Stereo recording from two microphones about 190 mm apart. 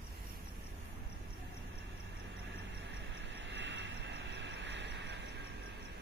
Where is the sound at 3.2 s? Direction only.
70° right (ahead or behind).